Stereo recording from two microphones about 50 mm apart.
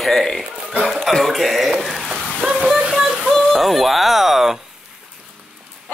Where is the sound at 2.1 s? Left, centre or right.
Right.